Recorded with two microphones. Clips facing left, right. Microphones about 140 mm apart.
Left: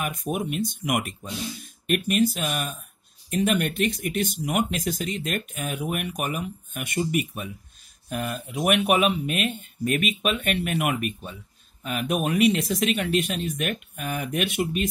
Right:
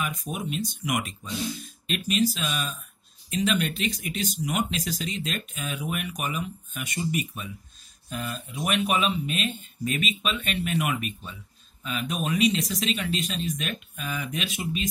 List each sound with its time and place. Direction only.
0.0 s speech: 55° left (ahead or behind)